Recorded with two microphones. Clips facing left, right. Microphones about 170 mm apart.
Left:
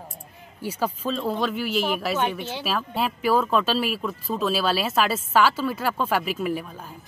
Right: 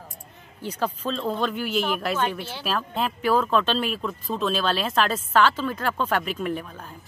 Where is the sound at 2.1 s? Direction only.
20° left (ahead or behind).